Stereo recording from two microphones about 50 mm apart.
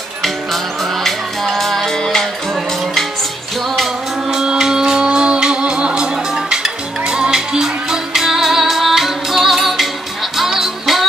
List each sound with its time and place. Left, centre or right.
1.0 s music: centre
4.3 s music: centre